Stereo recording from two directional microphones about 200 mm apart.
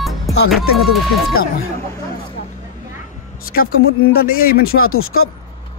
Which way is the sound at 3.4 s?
45° left (ahead or behind).